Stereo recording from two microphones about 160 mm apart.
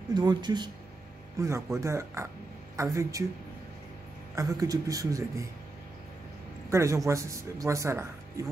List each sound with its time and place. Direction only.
0.1 s speech: 25° right (ahead or behind)
4.4 s speech: 20° right (ahead or behind)
6.7 s speech: 20° right (ahead or behind)